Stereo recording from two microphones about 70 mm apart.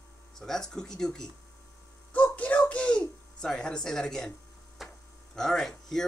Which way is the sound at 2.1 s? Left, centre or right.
Left.